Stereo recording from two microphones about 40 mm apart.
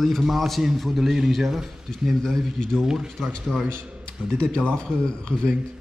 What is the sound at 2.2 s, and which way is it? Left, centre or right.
Speech, centre.